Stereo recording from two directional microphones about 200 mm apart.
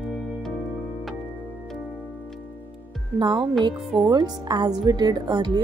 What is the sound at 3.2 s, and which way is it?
A woman's voice, 25° right (ahead or behind).